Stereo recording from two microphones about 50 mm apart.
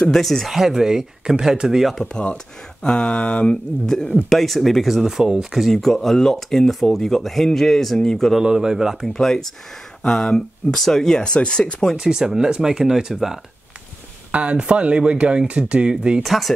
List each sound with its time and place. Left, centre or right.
0.1 s speech: centre
0.5 s speech: centre
2.3 s speech: centre
4.3 s speech: centre
5.8 s speech: centre
8.5 s speech: centre
9.0 s speech: centre
12.0 s speech: centre
14.3 s speech: right
16.2 s speech: centre